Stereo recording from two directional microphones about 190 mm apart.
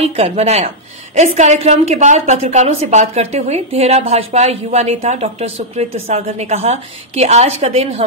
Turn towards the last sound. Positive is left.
turn(degrees=-35)  # may be behind; listen again after turning